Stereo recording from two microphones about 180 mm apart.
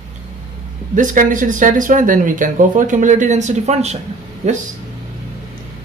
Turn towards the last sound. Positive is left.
turn(degrees=-40)  # may be behind; listen again after turning